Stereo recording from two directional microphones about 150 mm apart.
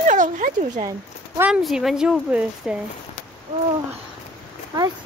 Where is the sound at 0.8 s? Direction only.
20° right (ahead or behind).